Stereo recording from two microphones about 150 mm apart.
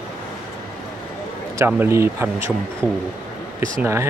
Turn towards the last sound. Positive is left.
turn(degrees=-15)  # may be behind; listen again after turning